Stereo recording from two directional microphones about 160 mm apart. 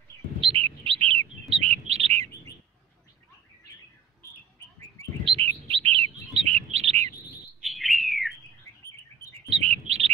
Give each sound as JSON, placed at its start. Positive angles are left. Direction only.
{"t": 0.4, "sound": "bird", "side_deg": -35}
{"t": 5.2, "sound": "bird", "side_deg": -35}
{"t": 7.6, "sound": "bird", "side_deg": 0}
{"t": 9.5, "sound": "bird", "side_deg": -40}